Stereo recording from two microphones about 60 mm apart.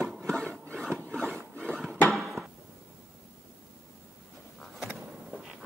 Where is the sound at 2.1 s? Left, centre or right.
Centre.